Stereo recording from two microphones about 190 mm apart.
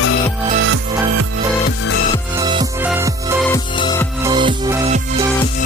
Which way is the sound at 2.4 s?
25° right (ahead or behind).